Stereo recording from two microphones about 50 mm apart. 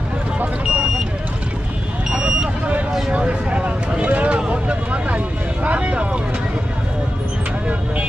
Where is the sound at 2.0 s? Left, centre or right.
Centre.